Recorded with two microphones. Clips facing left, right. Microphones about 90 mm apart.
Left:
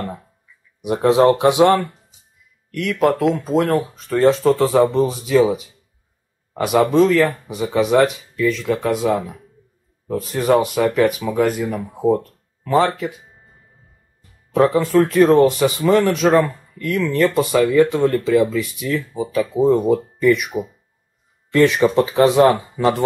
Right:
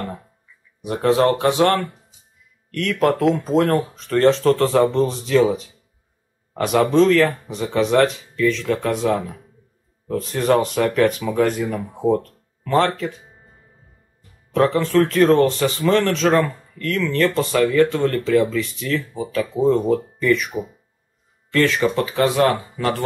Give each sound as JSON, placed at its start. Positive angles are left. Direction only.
{"t": 0.8, "sound": "speech", "side_deg": 15}
{"t": 14.5, "sound": "speech", "side_deg": 10}